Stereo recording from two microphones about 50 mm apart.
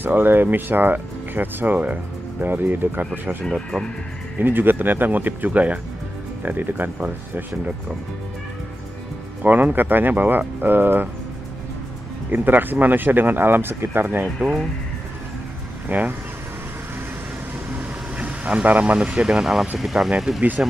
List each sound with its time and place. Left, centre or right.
0.0 s speech: right
3.4 s speech: centre
4.4 s speech: right
9.4 s speech: right
12.3 s speech: right
15.9 s speech: right
18.1 s vehicle: right
18.7 s speech: right
18.9 s speech: right
19.4 s speech: centre